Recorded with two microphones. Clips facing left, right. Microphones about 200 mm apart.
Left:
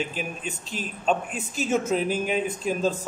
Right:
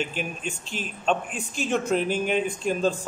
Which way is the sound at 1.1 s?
5° left (ahead or behind).